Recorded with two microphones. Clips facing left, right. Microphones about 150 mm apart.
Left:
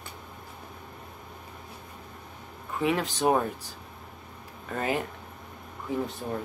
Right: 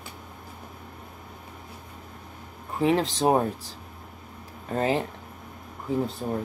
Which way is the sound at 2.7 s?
30° right (ahead or behind).